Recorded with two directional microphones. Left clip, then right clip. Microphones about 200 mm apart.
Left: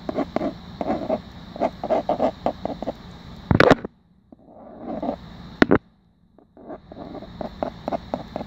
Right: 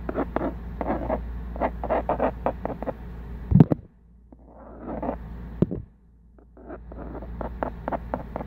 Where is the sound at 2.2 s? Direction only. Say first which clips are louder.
Left 3 dB; 10° left (ahead or behind).